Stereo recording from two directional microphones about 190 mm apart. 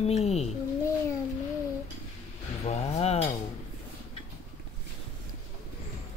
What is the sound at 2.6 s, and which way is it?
Speech, 35° left (ahead or behind).